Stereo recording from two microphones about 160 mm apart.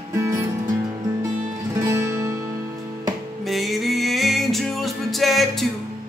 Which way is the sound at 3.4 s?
Centre (ahead or behind).